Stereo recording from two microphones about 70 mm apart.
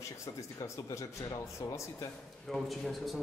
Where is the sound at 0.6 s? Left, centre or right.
Left.